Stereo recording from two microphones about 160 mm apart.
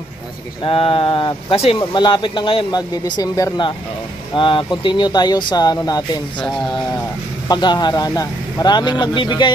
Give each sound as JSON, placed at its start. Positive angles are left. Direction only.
{"t": 0.7, "sound": "speech", "side_deg": 35}
{"t": 7.4, "sound": "speech", "side_deg": 25}